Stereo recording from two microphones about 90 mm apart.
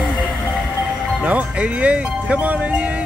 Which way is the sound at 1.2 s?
15° right (ahead or behind).